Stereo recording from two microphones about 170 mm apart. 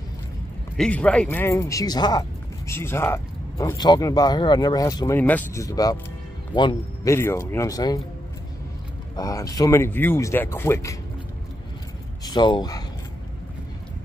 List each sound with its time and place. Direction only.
0.7 s a man's voice: 5° left (ahead or behind); by 7.2 s 25° left (ahead or behind)
7.2 s speech: 15° left (ahead or behind)
9.1 s speech: 20° left (ahead or behind)
12.3 s speech: 25° left (ahead or behind)